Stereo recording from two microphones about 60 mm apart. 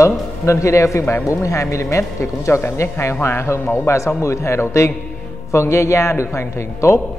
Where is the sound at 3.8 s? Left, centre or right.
Left.